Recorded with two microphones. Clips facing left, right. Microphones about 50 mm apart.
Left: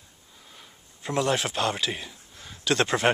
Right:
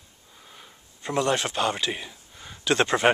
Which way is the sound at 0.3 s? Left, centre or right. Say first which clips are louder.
Right 2 dB; centre.